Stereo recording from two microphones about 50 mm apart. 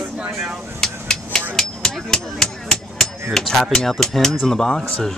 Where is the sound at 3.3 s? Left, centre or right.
Centre.